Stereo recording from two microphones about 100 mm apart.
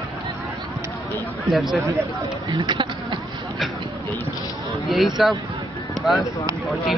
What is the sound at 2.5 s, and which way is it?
Speech, 50° right (ahead or behind).